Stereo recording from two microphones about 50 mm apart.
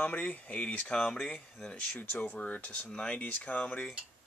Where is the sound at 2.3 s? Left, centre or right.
Left.